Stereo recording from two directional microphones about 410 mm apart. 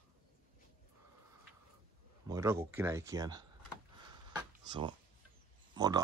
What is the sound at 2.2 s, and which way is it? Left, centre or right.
Speech, centre.